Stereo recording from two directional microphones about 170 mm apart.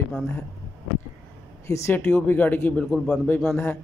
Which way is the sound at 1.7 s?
15° left (ahead or behind).